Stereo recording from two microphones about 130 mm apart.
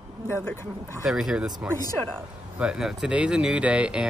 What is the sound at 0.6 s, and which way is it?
Speech, 20° right (ahead or behind).